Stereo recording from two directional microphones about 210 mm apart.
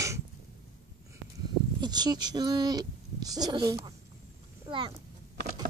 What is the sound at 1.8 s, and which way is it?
Speech, 20° right (ahead or behind).